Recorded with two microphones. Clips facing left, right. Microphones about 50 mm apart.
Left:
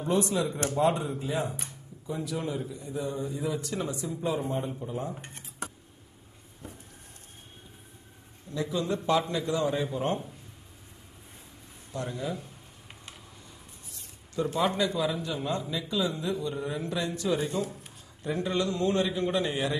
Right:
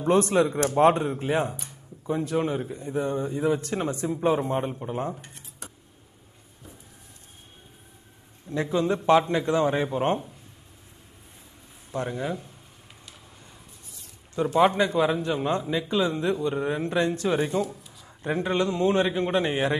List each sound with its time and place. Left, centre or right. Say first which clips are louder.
0.0 s a man's voice: right 6 dB; right
5.2 s a sound: left 4 dB; left
8.5 s speech: right 5 dB; right
11.9 s speech: right 4 dB; right
14.3 s speech: right 7 dB; right